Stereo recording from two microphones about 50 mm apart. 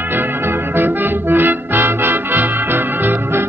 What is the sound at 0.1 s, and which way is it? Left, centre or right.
Music, right.